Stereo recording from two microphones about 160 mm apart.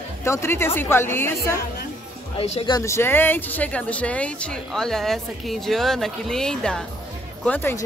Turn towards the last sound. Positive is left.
turn(degrees=10)  # may be behind; listen again after turning